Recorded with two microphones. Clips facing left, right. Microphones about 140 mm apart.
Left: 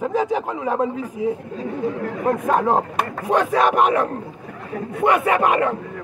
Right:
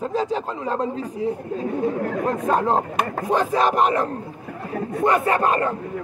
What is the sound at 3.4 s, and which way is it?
Speech, 60° left (ahead or behind).